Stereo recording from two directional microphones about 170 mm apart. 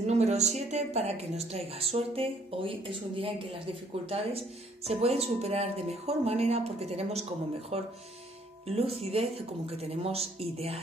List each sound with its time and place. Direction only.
0.0 s a woman's voice: 40° right (ahead or behind)